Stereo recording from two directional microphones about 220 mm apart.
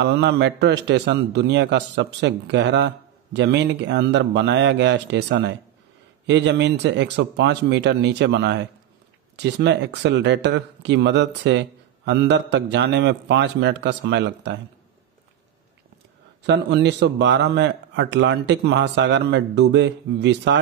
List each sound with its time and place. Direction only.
0.0 s speech: 50° right (ahead or behind)
16.4 s speech: 50° right (ahead or behind)